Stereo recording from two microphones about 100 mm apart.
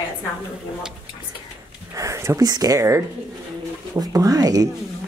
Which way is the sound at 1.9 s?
30° right (ahead or behind).